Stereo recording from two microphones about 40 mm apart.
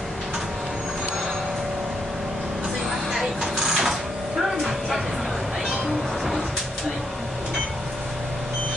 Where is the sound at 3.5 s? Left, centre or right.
Centre.